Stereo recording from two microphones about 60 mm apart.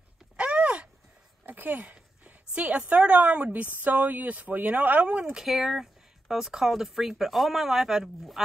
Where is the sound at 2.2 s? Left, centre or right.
Right.